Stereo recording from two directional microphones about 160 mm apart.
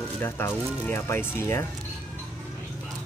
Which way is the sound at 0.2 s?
15° left (ahead or behind).